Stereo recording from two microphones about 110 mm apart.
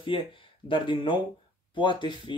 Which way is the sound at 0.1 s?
50° left (ahead or behind).